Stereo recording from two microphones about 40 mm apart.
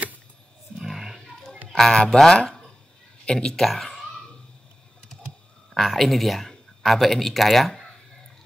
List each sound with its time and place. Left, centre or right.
0.8 s roaring cats: centre
1.7 s speech: centre
5.8 s speech: centre